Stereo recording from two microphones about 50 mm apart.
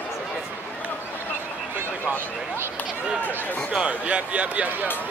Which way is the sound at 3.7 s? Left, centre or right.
Right.